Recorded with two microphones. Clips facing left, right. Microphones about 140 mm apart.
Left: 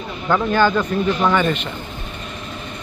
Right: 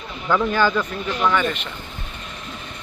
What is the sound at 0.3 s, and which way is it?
Speech, 5° right (ahead or behind).